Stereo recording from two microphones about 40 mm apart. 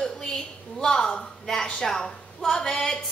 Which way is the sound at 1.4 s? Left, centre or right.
Centre.